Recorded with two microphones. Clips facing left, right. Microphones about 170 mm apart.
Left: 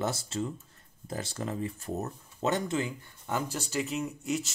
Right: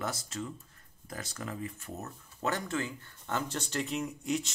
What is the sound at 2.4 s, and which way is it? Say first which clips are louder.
Speech: left 4 dB; 20° left (ahead or behind).